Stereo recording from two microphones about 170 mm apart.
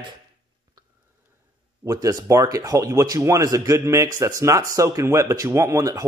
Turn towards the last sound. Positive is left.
turn(degrees=-20)  # may be behind; listen again after turning